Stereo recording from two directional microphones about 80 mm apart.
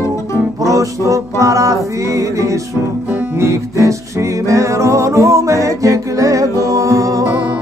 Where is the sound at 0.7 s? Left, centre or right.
Right.